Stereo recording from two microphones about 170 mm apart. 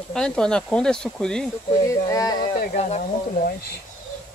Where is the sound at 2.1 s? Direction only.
20° left (ahead or behind).